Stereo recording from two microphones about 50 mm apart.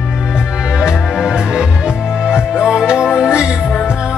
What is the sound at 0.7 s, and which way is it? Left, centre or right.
Music, centre.